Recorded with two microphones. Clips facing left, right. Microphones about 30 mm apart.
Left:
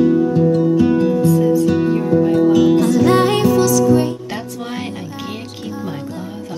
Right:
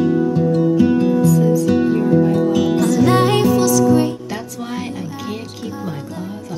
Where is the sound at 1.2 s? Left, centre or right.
Left.